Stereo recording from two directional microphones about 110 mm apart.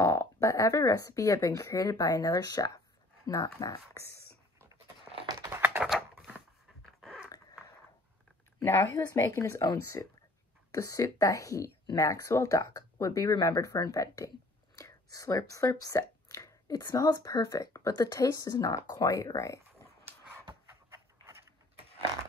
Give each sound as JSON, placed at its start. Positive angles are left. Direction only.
{"t": 0.0, "sound": "speech", "side_deg": 25}
{"t": 5.1, "sound": "a sound", "side_deg": -50}
{"t": 5.4, "sound": "typing", "side_deg": -20}
{"t": 6.9, "sound": "dog", "side_deg": 0}
{"t": 8.9, "sound": "a woman's voice", "side_deg": 30}